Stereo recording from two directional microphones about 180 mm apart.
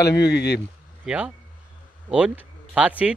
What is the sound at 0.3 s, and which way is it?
Speech, 70° left (ahead or behind).